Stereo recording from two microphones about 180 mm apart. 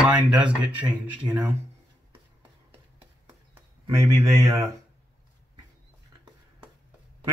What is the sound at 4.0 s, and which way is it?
Speech, 15° right (ahead or behind).